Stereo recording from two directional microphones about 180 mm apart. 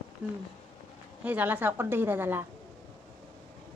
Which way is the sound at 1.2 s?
10° right (ahead or behind).